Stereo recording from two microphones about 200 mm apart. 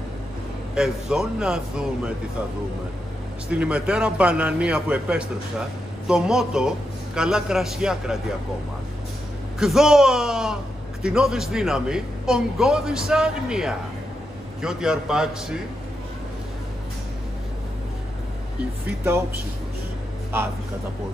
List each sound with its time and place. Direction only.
0.7 s a man's voice: 5° right (ahead or behind)
3.4 s a man's voice: 5° right (ahead or behind)
9.6 s a man's voice: centre (ahead or behind)
18.9 s speech: 10° right (ahead or behind)